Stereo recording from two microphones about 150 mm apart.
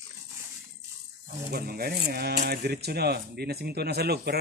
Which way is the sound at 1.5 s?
85° right.